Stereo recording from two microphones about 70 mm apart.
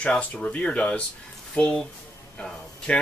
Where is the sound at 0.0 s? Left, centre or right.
Centre.